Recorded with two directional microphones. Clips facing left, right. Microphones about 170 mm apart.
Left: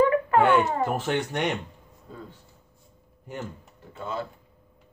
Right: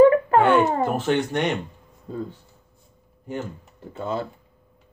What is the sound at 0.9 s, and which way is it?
Speech, 5° left (ahead or behind).